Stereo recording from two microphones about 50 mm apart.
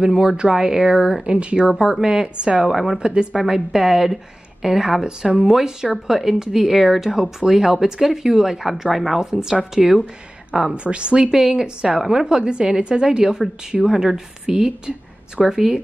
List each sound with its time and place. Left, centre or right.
0.0 s speech: centre
1.2 s a woman's voice: right
1.7 s speech: centre
2.0 s speech: centre
2.7 s speech: centre
3.0 s a woman's voice: centre
10.7 s a woman's voice: right
11.2 s speech: centre